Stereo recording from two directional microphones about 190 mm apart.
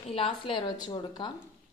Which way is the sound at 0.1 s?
30° left (ahead or behind).